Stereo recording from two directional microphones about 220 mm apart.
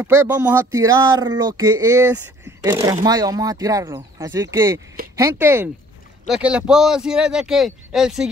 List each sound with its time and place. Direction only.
0.0 s a man's voice: 10° right (ahead or behind)